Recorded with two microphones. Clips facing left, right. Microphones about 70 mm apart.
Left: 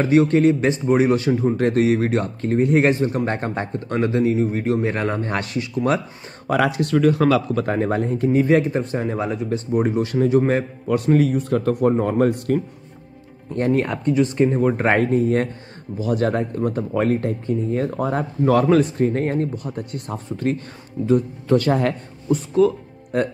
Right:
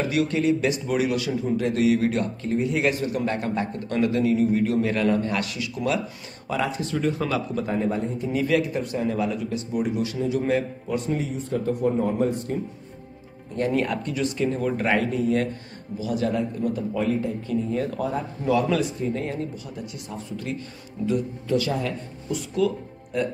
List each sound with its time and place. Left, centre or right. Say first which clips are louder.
0.0 s a man's voice: left 8 dB; left
6.5 s speech: left 7 dB; left
8.3 s a man's voice: left 6 dB; left
10.9 s speech: left 11 dB; left
13.7 s a man's voice: left 6 dB; left
17.5 s a man's voice: left 5 dB; left
18.1 s speech: left 6 dB; left
22.6 s a man's voice: left 6 dB; left